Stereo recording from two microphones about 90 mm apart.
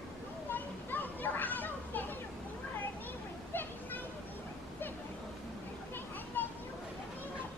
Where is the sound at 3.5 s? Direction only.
20° left (ahead or behind).